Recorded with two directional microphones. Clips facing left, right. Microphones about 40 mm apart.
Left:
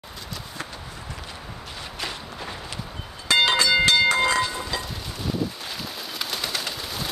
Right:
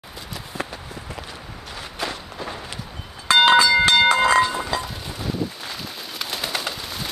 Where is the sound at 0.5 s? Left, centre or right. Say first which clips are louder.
Right 7 dB; right.